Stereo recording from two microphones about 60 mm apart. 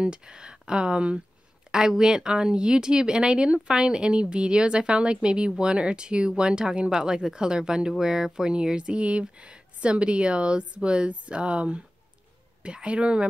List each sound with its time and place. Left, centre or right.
0.0 s speech: centre